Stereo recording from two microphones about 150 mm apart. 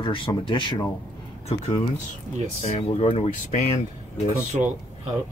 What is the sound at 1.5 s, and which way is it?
Speech, 45° left (ahead or behind).